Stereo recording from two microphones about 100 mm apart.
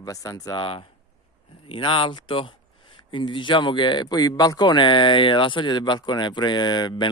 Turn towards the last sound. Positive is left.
turn(degrees=50)  # may be behind; listen again after turning